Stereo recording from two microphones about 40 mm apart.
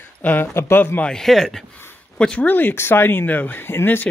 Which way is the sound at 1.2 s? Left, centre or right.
Centre.